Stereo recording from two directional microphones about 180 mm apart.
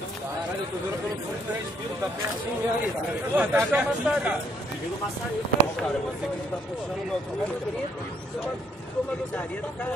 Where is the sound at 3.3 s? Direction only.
10° right (ahead or behind).